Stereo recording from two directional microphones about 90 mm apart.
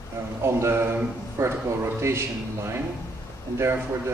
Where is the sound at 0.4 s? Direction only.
30° right (ahead or behind).